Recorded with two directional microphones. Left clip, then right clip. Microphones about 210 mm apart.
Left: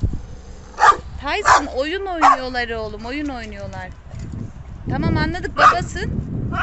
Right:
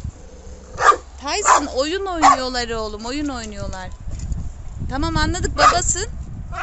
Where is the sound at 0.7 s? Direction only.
55° left (ahead or behind).